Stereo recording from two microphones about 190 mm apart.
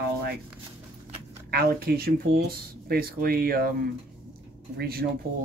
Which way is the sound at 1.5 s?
55° right (ahead or behind).